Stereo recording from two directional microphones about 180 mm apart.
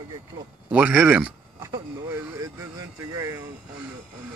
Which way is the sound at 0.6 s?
10° right (ahead or behind).